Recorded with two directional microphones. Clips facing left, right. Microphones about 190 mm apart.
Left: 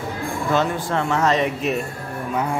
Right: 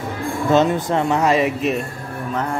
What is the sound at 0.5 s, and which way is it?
A man's voice, 20° right (ahead or behind).